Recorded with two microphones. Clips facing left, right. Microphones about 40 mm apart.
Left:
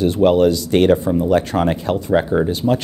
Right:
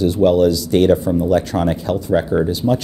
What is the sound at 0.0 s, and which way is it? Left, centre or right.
Speech, left.